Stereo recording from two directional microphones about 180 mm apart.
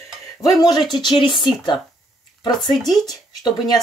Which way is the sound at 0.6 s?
20° left (ahead or behind).